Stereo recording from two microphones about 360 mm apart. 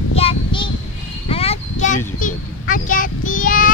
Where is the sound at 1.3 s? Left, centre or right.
Centre.